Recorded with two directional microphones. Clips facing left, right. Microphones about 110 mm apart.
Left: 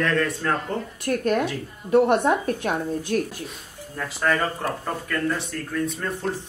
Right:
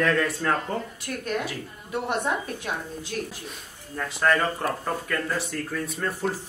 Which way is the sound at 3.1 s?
50° left (ahead or behind).